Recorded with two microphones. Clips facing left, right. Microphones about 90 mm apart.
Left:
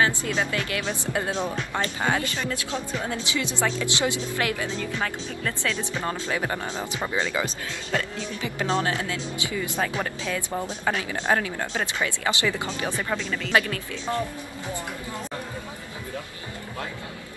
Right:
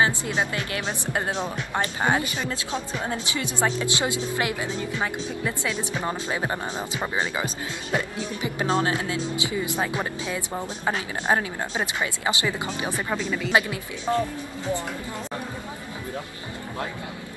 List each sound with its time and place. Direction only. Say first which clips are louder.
0.0 s speech: even; 20° right (ahead or behind)